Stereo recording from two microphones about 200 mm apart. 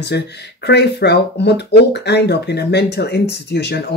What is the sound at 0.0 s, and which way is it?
Speech, 55° left (ahead or behind).